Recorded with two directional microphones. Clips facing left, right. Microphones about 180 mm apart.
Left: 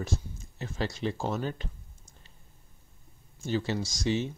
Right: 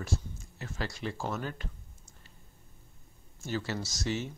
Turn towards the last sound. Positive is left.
turn(degrees=15)  # may be behind; listen again after turning